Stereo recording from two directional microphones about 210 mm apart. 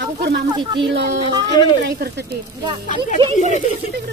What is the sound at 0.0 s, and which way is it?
Speech, 50° right (ahead or behind).